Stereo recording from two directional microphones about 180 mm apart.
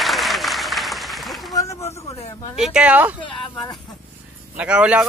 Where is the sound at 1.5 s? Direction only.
20° left (ahead or behind).